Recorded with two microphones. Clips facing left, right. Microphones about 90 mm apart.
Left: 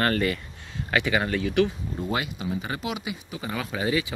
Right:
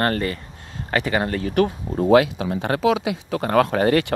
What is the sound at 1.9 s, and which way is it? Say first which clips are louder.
Speech: right 15 dB; 90° right.